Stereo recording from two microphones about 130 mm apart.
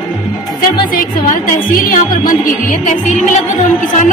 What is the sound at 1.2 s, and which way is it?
Speech, 90° left.